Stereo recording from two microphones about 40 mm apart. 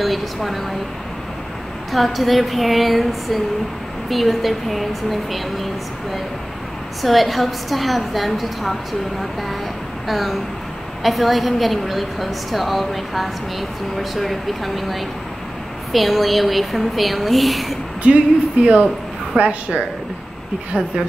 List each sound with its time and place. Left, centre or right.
0.0 s a woman's voice: centre
1.9 s a woman's voice: centre
7.0 s a woman's voice: centre
10.0 s a woman's voice: centre
18.0 s speech: right